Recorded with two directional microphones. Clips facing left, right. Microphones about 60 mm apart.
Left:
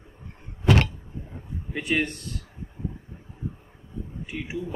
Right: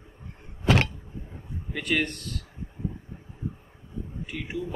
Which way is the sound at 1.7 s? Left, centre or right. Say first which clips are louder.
Left 1 dB; centre.